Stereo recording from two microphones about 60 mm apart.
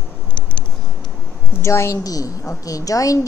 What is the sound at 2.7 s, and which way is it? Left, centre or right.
Speech, left.